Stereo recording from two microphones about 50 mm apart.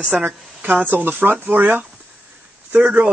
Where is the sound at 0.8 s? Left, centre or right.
Right.